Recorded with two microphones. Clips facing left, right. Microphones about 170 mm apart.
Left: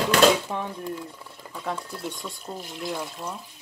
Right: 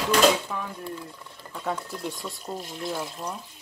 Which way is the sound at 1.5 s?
Centre (ahead or behind).